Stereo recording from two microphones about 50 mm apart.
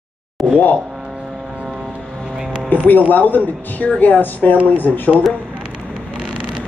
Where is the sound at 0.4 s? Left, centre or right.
Centre.